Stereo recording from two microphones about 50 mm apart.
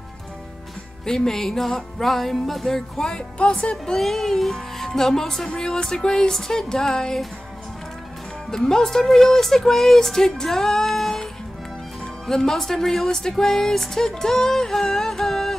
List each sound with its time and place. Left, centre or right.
1.0 s music: centre
3.3 s music: centre
3.7 s speech: centre
8.5 s speech: centre
12.3 s speech: centre